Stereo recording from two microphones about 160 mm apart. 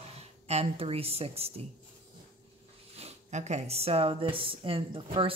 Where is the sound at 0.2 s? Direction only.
40° right (ahead or behind).